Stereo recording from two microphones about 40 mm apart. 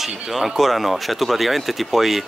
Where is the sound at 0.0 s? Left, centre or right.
Centre.